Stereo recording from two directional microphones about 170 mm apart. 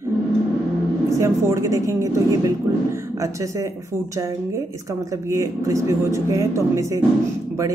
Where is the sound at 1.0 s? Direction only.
15° right (ahead or behind).